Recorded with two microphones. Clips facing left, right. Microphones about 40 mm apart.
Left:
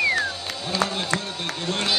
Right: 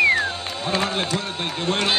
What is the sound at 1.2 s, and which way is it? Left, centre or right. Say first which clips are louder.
Run: right 3 dB; right.